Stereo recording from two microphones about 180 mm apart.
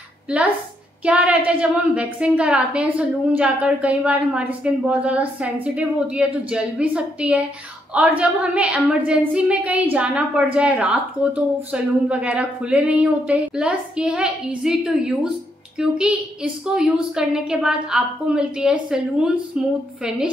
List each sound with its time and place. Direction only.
0.3 s a woman's voice: 5° right (ahead or behind)